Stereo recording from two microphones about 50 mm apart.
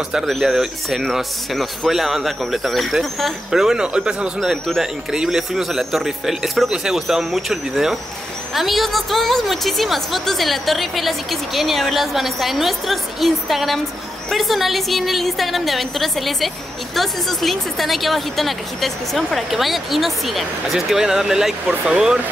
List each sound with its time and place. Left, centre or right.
0.5 s a woman's voice: centre